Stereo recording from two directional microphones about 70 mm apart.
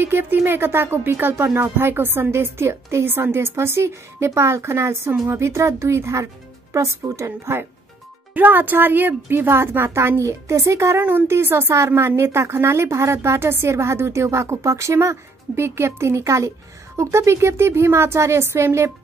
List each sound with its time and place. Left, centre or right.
0.0 s a woman's voice: right
8.4 s speech: right